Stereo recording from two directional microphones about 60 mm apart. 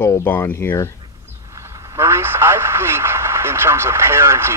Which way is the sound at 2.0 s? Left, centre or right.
Right.